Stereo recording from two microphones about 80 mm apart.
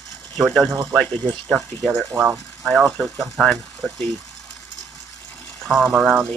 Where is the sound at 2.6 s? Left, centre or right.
Centre.